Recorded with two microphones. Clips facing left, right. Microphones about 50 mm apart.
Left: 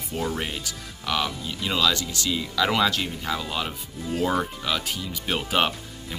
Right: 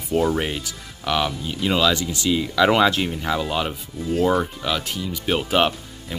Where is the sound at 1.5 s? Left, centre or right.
Centre.